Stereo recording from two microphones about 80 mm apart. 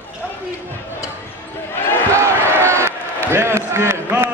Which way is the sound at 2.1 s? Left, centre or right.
Right.